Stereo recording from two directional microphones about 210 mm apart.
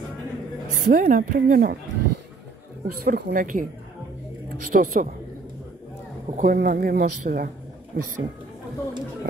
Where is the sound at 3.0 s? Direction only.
45° right (ahead or behind).